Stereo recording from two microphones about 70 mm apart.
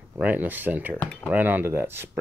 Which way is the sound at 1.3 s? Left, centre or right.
Right.